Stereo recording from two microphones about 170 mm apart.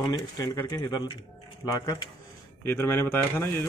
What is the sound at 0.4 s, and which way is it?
Speech, 20° left (ahead or behind).